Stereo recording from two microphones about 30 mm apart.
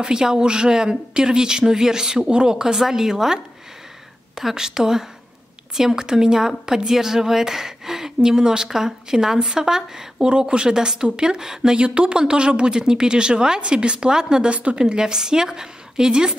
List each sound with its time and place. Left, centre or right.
0.0 s speech: right
4.4 s speech: centre
11.7 s speech: right
14.5 s speech: right